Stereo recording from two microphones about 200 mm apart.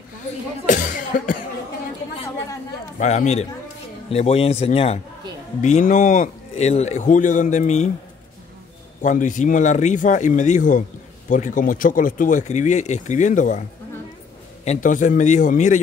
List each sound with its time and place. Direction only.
0.7 s speech: 40° left (ahead or behind)
3.0 s speech: 35° left (ahead or behind)
9.0 s speech: 40° left (ahead or behind)